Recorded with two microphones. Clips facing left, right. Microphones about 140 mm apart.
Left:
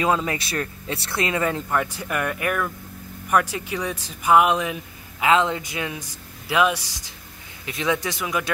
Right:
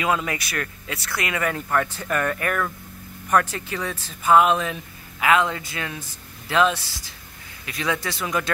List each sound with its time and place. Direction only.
0.0 s speech: 30° left (ahead or behind); by 8.5 s 10° left (ahead or behind)